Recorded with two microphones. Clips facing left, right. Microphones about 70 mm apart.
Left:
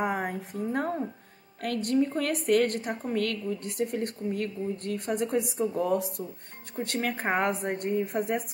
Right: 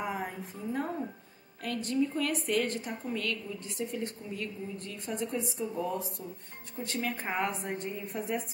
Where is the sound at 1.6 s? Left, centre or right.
Left.